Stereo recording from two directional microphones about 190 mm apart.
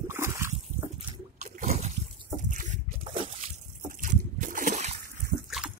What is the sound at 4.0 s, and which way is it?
Trickle, 45° right (ahead or behind).